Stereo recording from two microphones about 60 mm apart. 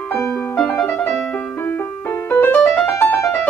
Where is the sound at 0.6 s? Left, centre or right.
Left.